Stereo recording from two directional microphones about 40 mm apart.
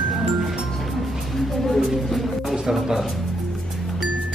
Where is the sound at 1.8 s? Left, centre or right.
Centre.